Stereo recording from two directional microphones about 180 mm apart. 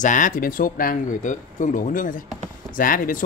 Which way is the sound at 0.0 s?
45° left (ahead or behind).